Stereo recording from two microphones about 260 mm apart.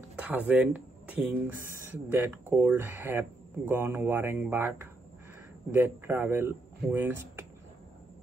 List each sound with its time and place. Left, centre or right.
0.1 s speech: centre